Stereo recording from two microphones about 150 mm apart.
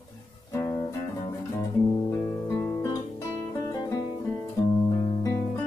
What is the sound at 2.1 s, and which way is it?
Music, 20° left (ahead or behind).